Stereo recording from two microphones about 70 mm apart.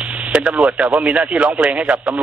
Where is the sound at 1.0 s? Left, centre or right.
Centre.